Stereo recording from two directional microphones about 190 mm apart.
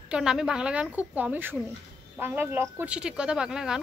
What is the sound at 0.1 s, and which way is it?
A woman's voice, 5° right (ahead or behind).